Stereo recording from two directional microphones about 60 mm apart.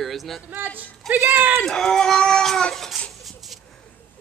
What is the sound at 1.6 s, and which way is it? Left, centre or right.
Speech, centre.